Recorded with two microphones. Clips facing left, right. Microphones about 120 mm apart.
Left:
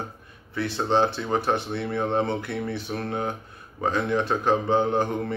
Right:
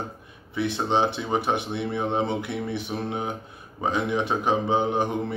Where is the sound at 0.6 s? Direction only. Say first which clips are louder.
Left 1 dB; 15° right (ahead or behind).